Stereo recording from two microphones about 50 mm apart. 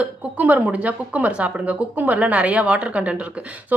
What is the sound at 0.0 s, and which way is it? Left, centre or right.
A woman's voice, right.